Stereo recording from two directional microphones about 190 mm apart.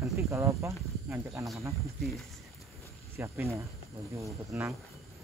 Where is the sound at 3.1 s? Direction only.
15° right (ahead or behind).